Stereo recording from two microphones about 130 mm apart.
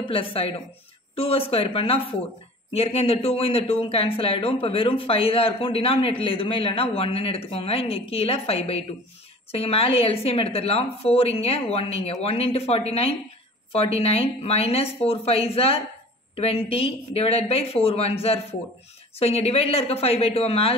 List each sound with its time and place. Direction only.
0.0 s speech: 45° left (ahead or behind)